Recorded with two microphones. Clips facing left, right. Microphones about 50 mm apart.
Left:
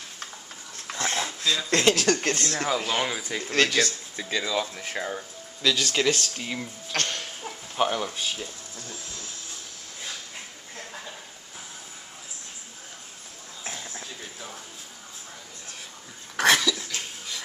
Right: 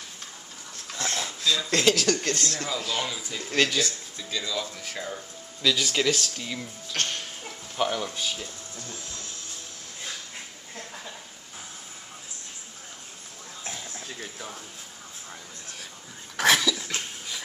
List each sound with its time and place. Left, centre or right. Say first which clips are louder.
0.9 s speech: left 3 dB; centre; by 3.4 s left
3.8 s speech: left 3 dB; left
4.2 s speech: left 4 dB; left
5.6 s speech: even; centre
6.3 s speech: left 2 dB; left
6.9 s a sound: left 1 dB; left
7.4 s speech: left 2 dB; centre
13.7 s a sound: left 1 dB; centre
16.3 s dog: left 1 dB; centre